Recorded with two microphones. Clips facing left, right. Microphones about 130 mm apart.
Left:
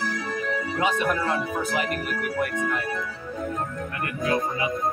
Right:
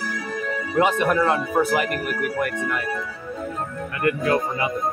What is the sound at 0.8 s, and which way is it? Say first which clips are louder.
Speech: right 6 dB; 65° right (ahead or behind).